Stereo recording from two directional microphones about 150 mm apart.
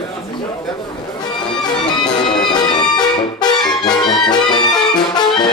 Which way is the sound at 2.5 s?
30° left (ahead or behind).